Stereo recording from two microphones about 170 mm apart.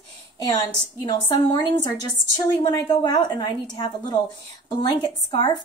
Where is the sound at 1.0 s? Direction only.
25° left (ahead or behind).